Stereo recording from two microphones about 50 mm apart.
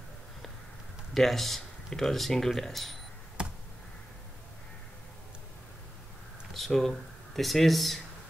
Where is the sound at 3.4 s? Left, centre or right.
Centre.